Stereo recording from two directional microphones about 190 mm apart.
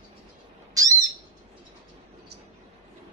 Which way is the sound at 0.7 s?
20° right (ahead or behind).